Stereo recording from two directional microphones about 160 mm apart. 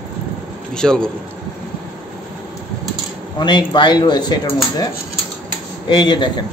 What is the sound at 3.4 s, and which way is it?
Speech, 30° left (ahead or behind).